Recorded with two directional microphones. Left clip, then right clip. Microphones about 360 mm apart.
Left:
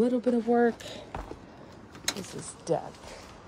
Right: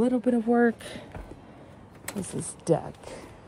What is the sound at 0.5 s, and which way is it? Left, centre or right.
Speech, right.